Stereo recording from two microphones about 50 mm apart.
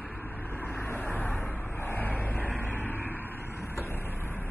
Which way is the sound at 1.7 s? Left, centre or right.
Left.